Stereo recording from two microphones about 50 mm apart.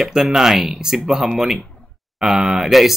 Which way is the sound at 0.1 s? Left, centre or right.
Centre.